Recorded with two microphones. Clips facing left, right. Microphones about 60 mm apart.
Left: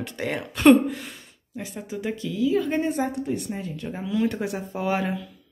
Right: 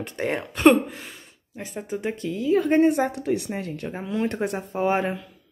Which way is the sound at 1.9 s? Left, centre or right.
Right.